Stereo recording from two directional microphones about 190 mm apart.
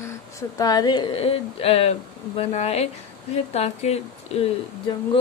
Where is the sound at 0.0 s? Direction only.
15° left (ahead or behind).